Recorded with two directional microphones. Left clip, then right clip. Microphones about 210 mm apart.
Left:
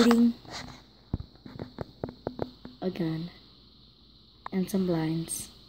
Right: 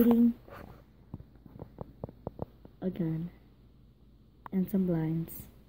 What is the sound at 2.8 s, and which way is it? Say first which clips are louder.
Speech: left 4 dB; centre (ahead or behind).